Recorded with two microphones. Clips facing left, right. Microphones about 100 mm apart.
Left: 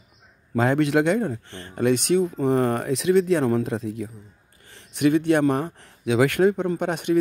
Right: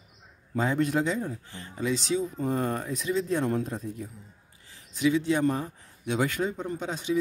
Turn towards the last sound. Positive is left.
turn(degrees=65)  # may be behind; listen again after turning